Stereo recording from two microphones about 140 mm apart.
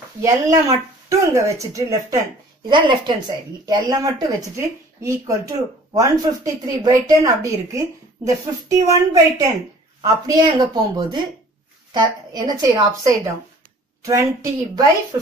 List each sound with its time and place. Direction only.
0.2 s speech: 25° right (ahead or behind)
2.7 s speech: 35° right (ahead or behind)